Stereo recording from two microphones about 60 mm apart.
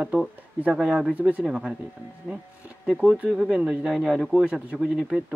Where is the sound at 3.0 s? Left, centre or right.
Right.